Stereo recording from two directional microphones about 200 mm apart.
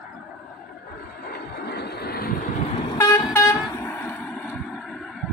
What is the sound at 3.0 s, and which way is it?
Vehicle, 15° left (ahead or behind).